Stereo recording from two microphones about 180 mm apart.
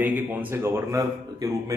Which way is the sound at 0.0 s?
10° right (ahead or behind).